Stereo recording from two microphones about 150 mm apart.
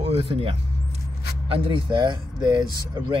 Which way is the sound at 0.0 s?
45° right (ahead or behind).